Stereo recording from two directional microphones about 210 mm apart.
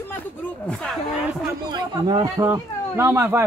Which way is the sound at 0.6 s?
5° left (ahead or behind).